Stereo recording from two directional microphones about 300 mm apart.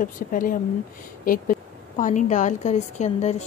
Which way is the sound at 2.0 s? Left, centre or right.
Left.